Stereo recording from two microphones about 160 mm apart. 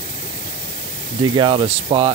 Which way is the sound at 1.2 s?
30° right (ahead or behind).